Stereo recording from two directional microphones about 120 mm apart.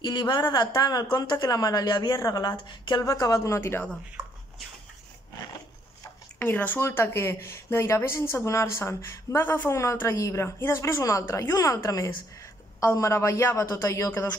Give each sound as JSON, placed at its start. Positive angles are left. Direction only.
{"t": 0.0, "sound": "a woman's voice", "side_deg": 40}
{"t": 6.4, "sound": "speech", "side_deg": 15}